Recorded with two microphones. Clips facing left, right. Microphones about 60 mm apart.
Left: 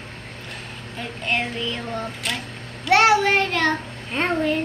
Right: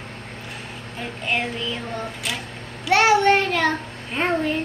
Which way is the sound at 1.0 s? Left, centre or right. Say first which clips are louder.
Even; centre.